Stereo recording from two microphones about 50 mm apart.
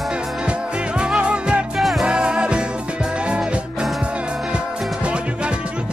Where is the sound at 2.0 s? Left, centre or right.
Centre.